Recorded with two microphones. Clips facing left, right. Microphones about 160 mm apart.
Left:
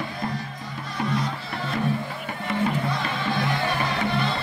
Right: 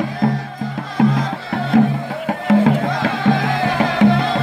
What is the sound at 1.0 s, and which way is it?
Music, 90° right.